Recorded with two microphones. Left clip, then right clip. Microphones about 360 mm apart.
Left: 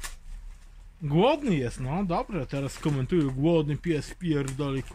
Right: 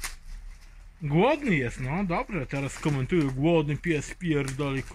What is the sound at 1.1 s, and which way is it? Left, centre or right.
Speech, centre.